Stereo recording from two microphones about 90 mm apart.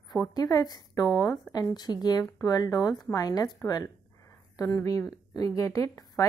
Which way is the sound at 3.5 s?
45° left (ahead or behind).